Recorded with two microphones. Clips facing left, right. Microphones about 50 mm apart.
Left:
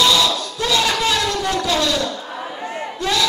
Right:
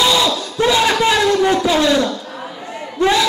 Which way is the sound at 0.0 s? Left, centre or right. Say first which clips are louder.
Right 1 dB; centre.